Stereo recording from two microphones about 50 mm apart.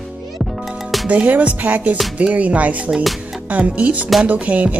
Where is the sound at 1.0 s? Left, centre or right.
Right.